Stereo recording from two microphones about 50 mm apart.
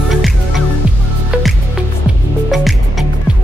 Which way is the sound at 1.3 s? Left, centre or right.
Centre.